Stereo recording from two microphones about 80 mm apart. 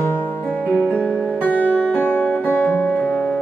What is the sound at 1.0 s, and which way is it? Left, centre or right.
Music, right.